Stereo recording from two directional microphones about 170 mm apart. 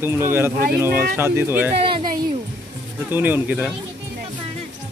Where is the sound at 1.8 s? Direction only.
30° right (ahead or behind).